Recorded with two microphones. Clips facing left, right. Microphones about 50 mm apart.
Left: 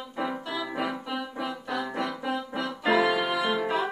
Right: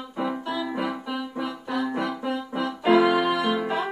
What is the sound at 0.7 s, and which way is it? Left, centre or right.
Music, centre.